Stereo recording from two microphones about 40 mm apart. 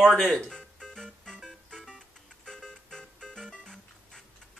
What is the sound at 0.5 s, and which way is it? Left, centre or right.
Music, centre.